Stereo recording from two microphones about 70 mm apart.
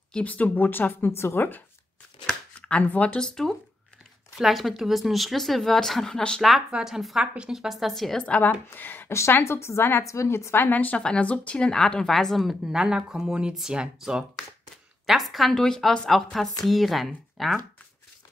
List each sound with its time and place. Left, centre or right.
0.1 s speech: left
2.6 s speech: centre
3.2 s a woman's voice: centre
6.7 s a woman's voice: centre
8.2 s speech: centre
9.3 s a woman's voice: left; by 17.6 s centre